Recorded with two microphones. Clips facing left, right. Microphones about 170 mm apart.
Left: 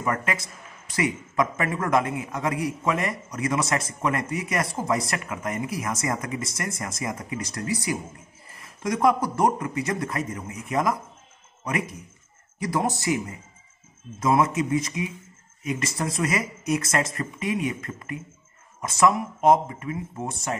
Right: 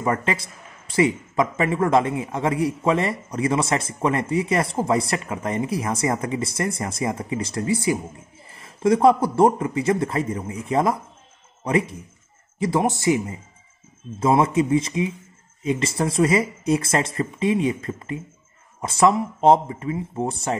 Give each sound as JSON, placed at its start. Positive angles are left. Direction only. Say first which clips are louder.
{"t": 0.0, "sound": "speech", "louder": "right 4 dB", "side_deg": -30}